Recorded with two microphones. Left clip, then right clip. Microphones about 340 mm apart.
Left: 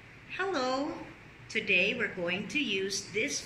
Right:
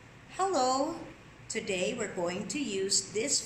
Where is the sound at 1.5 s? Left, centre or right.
Centre.